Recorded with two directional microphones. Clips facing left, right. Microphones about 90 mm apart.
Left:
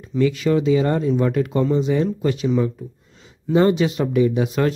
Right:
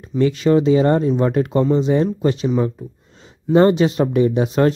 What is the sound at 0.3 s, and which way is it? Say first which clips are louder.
Speech: right 6 dB; 30° right (ahead or behind).